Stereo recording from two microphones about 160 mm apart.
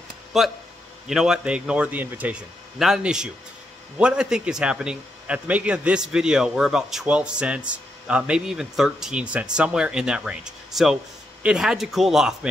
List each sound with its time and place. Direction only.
0.3 s a man's voice: centre (ahead or behind)